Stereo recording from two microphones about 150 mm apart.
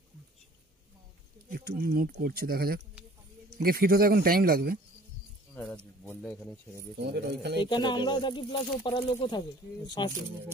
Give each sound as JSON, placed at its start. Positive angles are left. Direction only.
{"t": 1.5, "sound": "speech", "side_deg": -80}
{"t": 6.0, "sound": "speech", "side_deg": 10}
{"t": 7.0, "sound": "speech", "side_deg": -90}
{"t": 7.6, "sound": "speech", "side_deg": 30}